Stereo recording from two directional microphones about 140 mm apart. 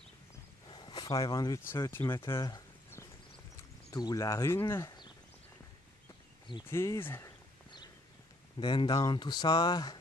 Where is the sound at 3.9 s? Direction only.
25° left (ahead or behind).